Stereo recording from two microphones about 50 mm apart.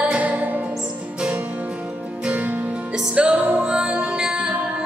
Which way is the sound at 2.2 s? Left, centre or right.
Right.